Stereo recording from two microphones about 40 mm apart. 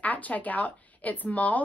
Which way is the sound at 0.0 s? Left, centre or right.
Left.